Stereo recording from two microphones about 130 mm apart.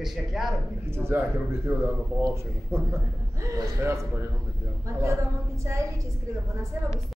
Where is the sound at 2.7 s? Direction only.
20° right (ahead or behind).